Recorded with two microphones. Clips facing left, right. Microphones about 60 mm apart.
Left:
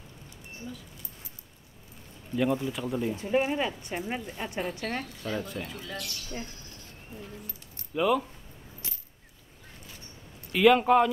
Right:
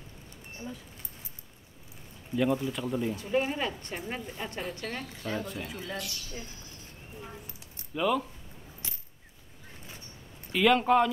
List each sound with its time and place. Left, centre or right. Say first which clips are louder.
2.3 s speech: even; centre
3.3 s speech: left 4 dB; centre
5.2 s speech: left 1 dB; centre
5.7 s speech: right 1 dB; centre
7.2 s speech: left 1 dB; right
7.9 s speech: left 2 dB; centre
10.5 s speech: left 3 dB; centre